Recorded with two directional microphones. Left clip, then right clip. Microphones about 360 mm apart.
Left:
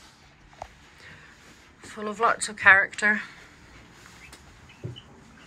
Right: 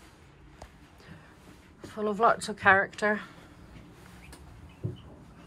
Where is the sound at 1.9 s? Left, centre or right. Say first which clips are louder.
Even; centre.